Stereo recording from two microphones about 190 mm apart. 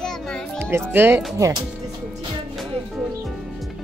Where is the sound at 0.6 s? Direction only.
15° right (ahead or behind).